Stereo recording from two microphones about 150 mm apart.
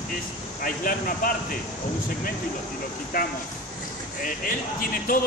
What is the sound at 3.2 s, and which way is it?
Speech, 75° left (ahead or behind).